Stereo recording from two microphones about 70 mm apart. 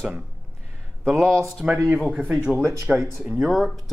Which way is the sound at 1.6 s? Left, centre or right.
Right.